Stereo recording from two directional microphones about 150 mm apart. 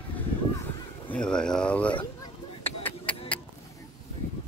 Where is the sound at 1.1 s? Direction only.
5° left (ahead or behind).